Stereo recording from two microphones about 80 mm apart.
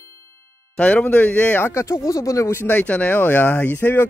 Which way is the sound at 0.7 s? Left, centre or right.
Centre.